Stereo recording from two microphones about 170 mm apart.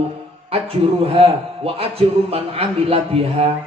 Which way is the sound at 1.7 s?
35° right (ahead or behind).